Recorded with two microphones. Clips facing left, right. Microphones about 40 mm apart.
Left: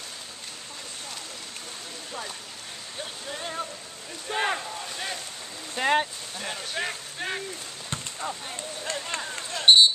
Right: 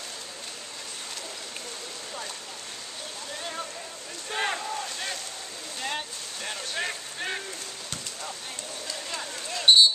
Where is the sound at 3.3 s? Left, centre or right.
Centre.